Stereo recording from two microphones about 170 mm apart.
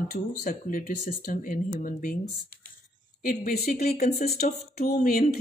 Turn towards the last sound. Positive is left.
turn(degrees=55)  # may be behind; listen again after turning